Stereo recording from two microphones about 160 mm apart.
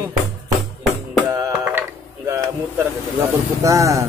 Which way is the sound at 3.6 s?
20° right (ahead or behind).